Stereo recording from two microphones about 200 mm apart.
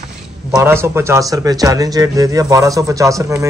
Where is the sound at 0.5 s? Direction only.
15° right (ahead or behind).